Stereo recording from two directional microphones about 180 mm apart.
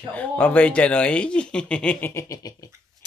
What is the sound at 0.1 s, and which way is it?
Speech, 10° left (ahead or behind).